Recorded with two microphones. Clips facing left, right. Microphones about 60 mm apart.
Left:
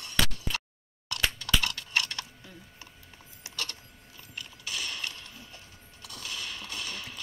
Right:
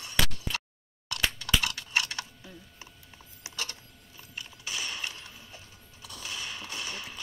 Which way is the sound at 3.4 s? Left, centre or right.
Centre.